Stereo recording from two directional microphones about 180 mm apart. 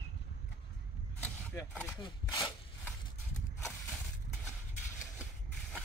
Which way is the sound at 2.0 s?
25° left (ahead or behind).